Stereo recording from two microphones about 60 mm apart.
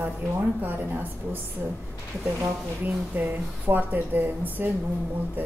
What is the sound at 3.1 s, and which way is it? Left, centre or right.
A woman's voice, right.